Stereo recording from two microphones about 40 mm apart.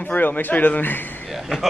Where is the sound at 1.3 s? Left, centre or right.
Centre.